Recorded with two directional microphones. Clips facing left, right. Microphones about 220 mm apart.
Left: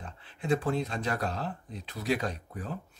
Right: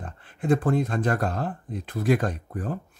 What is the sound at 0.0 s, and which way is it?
Speech, 50° right (ahead or behind).